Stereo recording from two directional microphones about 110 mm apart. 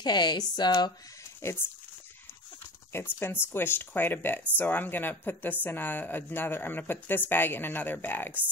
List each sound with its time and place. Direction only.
0.0 s speech: 40° left (ahead or behind)
1.4 s speech: 20° left (ahead or behind)
3.2 s speech: 20° left (ahead or behind)